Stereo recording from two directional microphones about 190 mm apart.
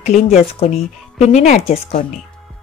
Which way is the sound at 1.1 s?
40° left (ahead or behind).